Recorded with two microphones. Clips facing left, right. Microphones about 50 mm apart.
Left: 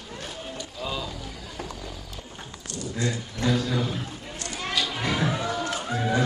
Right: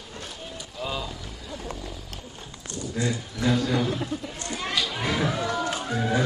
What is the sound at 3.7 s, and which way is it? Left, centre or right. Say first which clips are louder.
Speech: right 3 dB; right.